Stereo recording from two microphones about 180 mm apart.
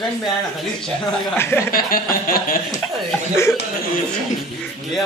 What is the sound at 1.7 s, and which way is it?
Speech, 55° left (ahead or behind).